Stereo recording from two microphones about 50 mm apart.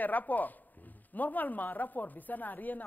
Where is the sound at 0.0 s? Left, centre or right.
Left.